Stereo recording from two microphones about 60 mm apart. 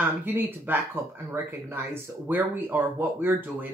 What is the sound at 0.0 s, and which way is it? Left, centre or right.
Speech, right.